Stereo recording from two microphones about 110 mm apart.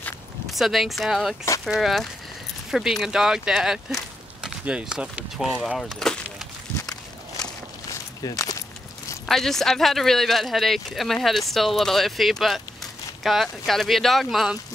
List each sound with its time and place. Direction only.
0.5 s speech: centre (ahead or behind)
6.8 s walk: 35° left (ahead or behind)
9.2 s speech: 5° left (ahead or behind)